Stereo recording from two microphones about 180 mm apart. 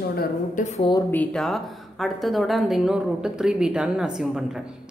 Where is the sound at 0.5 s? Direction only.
40° left (ahead or behind).